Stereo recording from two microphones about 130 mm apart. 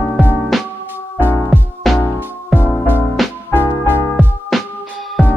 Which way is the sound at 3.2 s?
Centre (ahead or behind).